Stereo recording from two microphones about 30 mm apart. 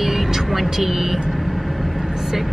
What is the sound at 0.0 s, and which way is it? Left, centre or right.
Vehicle, centre.